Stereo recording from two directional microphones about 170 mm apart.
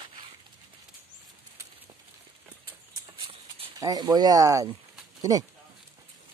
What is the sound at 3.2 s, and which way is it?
Clip-clop, 35° right (ahead or behind).